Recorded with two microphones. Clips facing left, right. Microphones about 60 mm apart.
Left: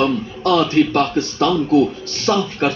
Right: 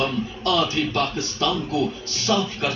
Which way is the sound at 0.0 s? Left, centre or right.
Left.